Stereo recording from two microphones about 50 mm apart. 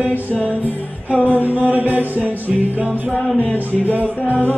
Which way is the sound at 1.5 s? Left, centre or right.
Right.